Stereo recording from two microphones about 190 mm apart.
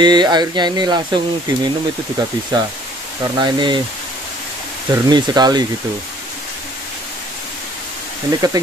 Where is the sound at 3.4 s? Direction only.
25° right (ahead or behind).